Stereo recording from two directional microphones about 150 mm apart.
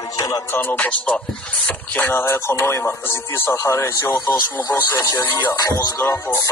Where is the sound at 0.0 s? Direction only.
25° left (ahead or behind).